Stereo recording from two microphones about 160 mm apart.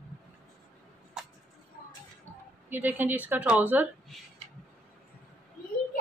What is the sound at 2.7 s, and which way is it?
A woman's voice, 10° right (ahead or behind).